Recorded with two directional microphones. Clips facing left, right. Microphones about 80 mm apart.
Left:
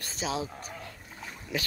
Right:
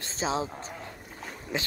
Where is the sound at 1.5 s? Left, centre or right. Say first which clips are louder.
Right 1 dB; right.